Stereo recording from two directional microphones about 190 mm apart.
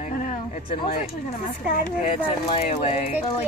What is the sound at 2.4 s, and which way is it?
Speech, 30° left (ahead or behind).